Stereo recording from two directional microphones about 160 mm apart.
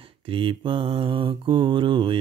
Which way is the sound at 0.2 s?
35° right (ahead or behind).